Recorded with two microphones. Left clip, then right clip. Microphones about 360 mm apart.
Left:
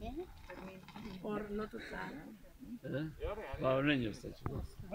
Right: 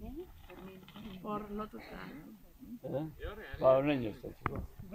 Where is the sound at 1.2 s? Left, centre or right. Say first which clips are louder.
Right 1 dB; left.